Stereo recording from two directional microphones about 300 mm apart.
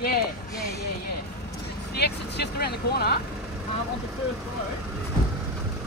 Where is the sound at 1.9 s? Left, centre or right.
Left.